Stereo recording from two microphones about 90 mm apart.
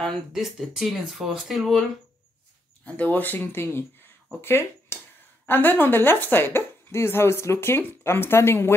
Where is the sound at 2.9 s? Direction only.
15° left (ahead or behind).